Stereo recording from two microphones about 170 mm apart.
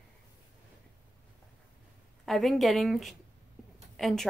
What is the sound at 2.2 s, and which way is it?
A woman's voice, centre (ahead or behind).